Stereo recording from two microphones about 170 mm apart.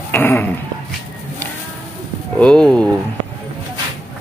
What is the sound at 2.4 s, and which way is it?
Speech, 5° left (ahead or behind).